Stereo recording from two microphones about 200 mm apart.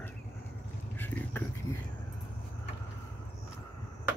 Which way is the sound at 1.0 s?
10° left (ahead or behind).